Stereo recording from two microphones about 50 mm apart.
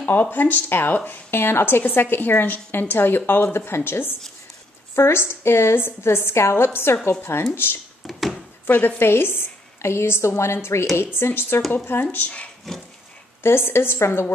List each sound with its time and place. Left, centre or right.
0.2 s speech: left
1.3 s a woman's voice: left
8.1 s a sound: centre
8.6 s speech: left
9.0 s a woman's voice: left
13.4 s a woman's voice: left